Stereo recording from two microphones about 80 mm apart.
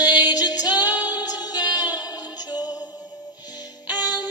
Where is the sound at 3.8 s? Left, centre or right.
Right.